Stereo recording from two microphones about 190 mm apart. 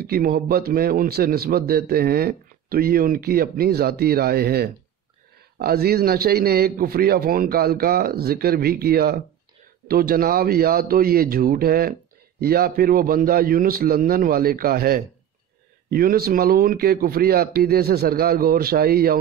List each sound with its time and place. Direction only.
0.0 s speech: 50° right (ahead or behind)